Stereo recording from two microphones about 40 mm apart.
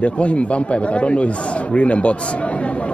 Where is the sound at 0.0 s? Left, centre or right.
Left.